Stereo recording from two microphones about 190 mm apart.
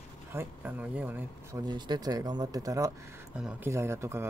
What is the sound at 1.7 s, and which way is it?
Speech, 20° right (ahead or behind).